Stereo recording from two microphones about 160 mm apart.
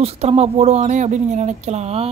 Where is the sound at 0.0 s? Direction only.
40° right (ahead or behind).